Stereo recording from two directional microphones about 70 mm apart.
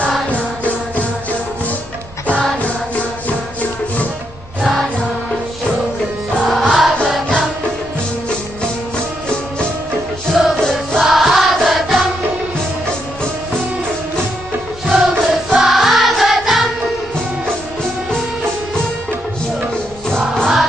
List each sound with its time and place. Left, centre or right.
0.3 s music: centre
2.6 s music: centre
6.4 s music: centre
10.3 s music: centre
14.9 s music: centre
20.1 s music: centre